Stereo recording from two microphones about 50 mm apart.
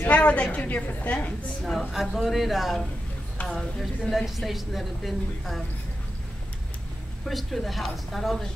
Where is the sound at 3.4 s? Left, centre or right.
Left.